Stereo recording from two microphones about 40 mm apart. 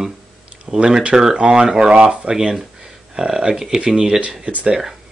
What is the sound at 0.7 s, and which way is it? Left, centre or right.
Speech, centre.